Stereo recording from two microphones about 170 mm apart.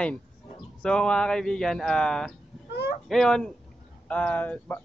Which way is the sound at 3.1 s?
Centre (ahead or behind).